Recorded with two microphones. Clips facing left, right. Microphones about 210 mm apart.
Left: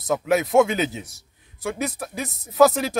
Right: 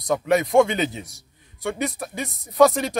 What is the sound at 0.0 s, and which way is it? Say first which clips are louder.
A man's voice: right 1 dB; centre (ahead or behind).